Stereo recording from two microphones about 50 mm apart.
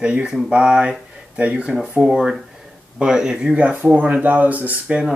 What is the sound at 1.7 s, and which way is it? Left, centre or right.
Speech, centre.